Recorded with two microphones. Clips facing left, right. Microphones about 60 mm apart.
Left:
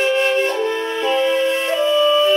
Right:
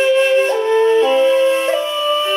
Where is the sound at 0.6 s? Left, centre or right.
Right.